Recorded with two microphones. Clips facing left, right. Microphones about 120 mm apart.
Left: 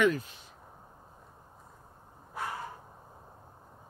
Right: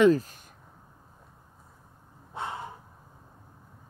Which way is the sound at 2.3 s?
25° right (ahead or behind).